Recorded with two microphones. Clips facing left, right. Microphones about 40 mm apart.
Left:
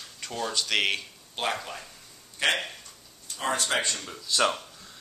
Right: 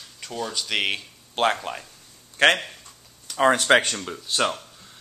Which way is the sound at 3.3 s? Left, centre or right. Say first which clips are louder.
Right 10 dB; right.